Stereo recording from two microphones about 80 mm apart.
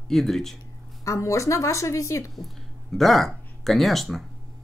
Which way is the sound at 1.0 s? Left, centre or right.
Left.